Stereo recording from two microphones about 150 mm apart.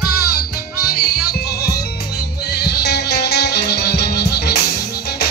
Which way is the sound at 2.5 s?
90° left.